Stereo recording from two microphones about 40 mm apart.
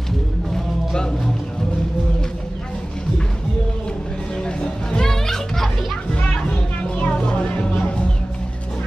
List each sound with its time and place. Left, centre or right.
0.6 s music: centre
4.5 s music: left
5.1 s music: centre
6.1 s music: left